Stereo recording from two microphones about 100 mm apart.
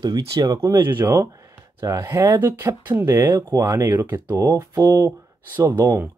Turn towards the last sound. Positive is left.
turn(degrees=-25)  # may be behind; listen again after turning